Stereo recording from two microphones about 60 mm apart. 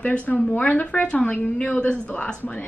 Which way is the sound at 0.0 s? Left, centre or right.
Left.